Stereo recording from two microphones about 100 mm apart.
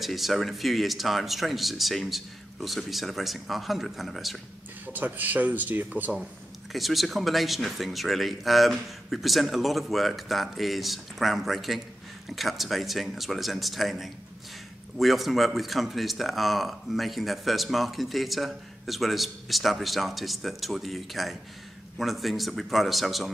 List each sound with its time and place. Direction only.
0.0 s speech: centre (ahead or behind)
4.9 s speech: 15° right (ahead or behind)
6.7 s speech: centre (ahead or behind)